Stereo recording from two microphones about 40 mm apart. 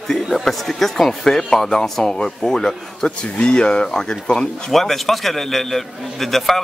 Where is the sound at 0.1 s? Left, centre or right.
Centre.